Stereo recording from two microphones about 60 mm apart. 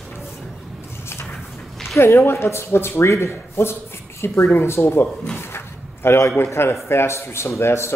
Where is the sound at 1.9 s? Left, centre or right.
Left.